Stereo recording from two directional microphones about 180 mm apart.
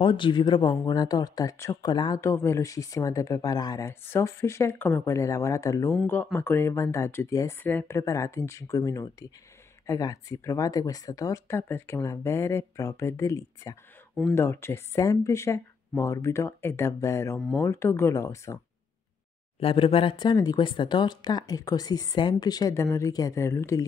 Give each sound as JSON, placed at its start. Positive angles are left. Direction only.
{"t": 0.0, "sound": "speech", "side_deg": 25}
{"t": 19.6, "sound": "speech", "side_deg": 30}